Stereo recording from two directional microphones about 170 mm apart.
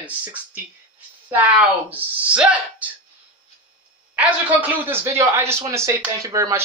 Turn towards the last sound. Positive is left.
turn(degrees=-20)  # may be behind; listen again after turning